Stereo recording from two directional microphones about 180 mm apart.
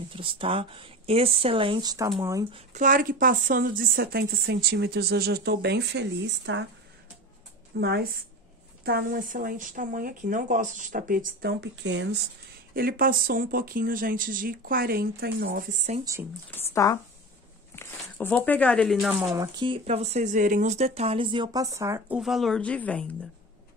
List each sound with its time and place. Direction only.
0.1 s speech: 30° right (ahead or behind)
2.7 s a woman's voice: 45° right (ahead or behind); by 6.7 s 85° right
7.8 s a woman's voice: 60° right (ahead or behind)
11.6 s speech: 80° right
12.7 s speech: 55° right (ahead or behind)
16.0 s speech: 20° right (ahead or behind)
16.4 s speech: 15° left (ahead or behind)
19.3 s speech: 25° right (ahead or behind)
22.2 s speech: centre (ahead or behind)